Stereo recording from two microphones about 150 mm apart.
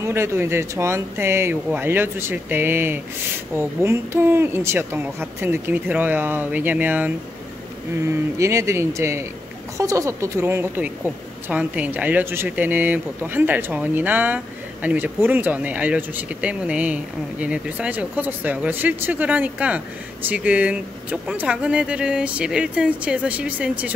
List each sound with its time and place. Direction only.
0.0 s speech: 15° right (ahead or behind)
8.4 s a woman's voice: 20° right (ahead or behind)